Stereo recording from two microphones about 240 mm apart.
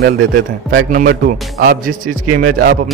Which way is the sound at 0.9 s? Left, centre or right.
Right.